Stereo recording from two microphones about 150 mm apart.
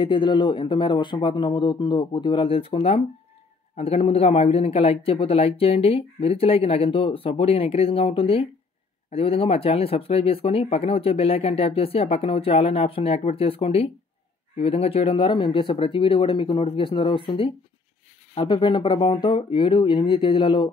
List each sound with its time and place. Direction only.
0.0 s speech: 30° left (ahead or behind)